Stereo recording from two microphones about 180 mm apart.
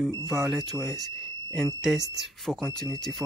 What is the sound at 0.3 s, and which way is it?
Speech, centre (ahead or behind).